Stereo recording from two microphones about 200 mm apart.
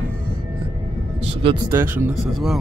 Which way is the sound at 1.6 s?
10° right (ahead or behind).